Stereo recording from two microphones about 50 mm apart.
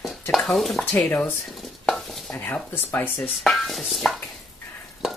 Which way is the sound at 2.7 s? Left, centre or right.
Left.